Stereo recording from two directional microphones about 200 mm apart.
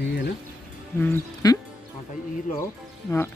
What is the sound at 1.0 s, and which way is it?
Speech, 15° left (ahead or behind).